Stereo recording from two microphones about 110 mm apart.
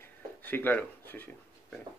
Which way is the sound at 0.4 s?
15° left (ahead or behind).